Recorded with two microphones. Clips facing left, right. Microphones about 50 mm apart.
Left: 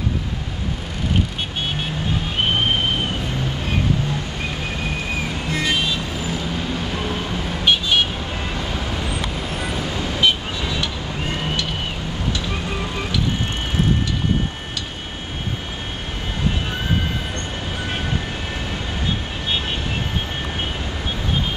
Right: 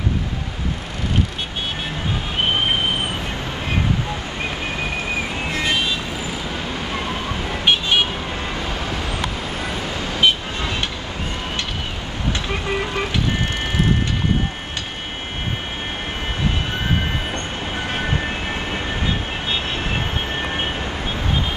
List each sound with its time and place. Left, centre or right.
5.5 s music: centre
9.7 s vehicle: right